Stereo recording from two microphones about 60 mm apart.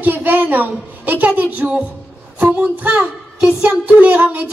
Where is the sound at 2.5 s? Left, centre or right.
Right.